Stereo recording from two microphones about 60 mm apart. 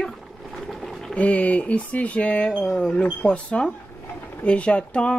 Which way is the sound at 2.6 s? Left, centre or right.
Centre.